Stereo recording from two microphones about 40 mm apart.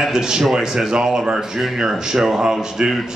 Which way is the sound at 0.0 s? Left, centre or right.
Centre.